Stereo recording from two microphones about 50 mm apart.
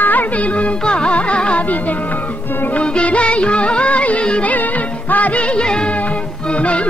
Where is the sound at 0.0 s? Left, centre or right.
Left.